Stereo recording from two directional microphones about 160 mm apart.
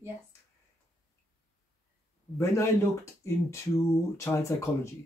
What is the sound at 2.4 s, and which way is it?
Speech, 15° left (ahead or behind).